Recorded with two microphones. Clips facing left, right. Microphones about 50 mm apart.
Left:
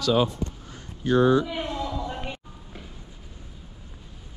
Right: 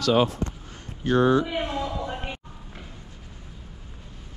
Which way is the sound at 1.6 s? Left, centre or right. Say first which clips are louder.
Right 1 dB; right.